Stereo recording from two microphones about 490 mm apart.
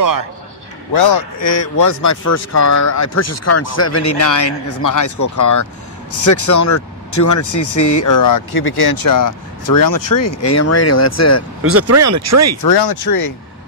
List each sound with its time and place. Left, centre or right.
0.9 s speech: left
11.6 s speech: right
12.6 s speech: left